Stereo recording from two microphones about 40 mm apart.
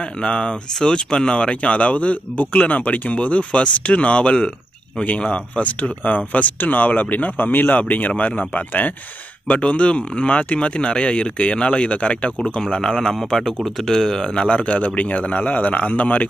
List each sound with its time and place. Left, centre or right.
0.0 s speech: left
13.1 s speech: centre; by 16.3 s left